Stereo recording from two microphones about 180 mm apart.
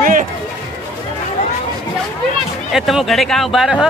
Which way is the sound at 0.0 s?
45° right (ahead or behind).